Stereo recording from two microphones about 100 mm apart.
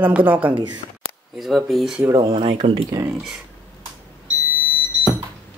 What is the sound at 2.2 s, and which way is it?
Speech, 90° right.